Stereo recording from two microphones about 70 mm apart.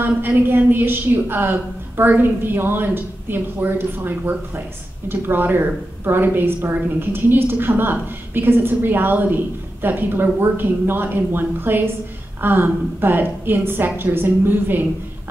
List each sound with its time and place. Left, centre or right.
0.0 s a woman's voice: right